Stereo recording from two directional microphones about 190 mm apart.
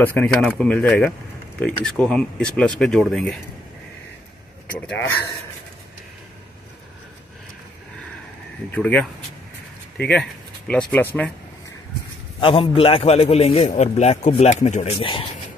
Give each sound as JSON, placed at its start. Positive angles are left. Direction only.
{"t": 0.0, "sound": "speech", "side_deg": 5}
{"t": 4.7, "sound": "speech", "side_deg": 10}
{"t": 8.7, "sound": "speech", "side_deg": 5}
{"t": 12.4, "sound": "a man's voice", "side_deg": 25}